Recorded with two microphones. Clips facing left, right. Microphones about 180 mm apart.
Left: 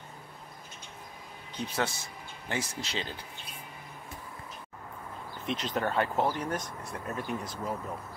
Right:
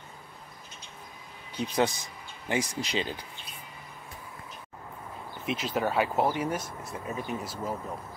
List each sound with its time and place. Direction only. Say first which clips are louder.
1.8 s speech: right 6 dB; 15° right (ahead or behind)
5.4 s speech: right 2 dB; 5° right (ahead or behind)